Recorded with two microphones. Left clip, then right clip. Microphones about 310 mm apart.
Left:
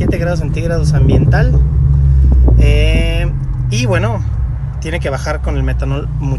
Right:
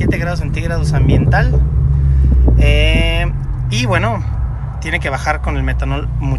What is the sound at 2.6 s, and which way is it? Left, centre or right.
Speech, centre.